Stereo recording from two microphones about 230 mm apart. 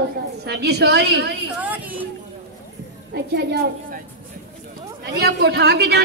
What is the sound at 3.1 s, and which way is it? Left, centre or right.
Speech, right.